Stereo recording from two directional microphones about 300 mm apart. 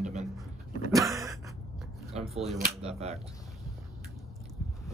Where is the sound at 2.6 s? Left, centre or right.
Right.